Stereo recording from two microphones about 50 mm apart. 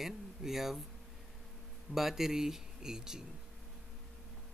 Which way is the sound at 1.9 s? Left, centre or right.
Centre.